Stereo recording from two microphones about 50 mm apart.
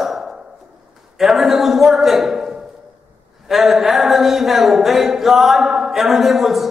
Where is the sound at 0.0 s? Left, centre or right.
Centre.